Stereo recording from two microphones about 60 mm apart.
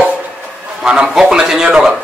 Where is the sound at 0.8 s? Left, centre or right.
Centre.